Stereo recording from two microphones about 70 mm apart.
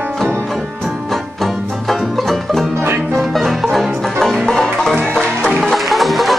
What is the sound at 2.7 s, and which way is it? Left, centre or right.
Music, right.